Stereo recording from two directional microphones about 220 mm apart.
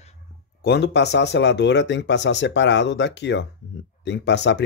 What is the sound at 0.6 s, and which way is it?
Speech, 50° left (ahead or behind).